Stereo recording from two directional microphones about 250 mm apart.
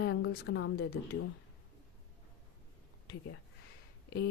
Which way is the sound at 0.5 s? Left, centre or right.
Left.